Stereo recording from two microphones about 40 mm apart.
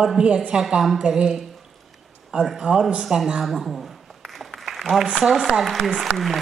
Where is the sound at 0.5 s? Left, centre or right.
Centre.